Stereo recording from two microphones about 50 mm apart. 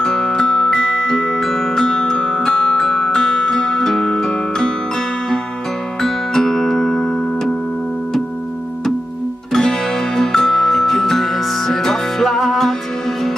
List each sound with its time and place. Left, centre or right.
0.0 s music: centre
2.4 s music: centre
5.9 s music: centre
9.5 s music: centre